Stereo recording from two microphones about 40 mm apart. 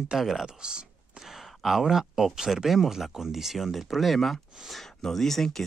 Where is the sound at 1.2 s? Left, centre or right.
Centre.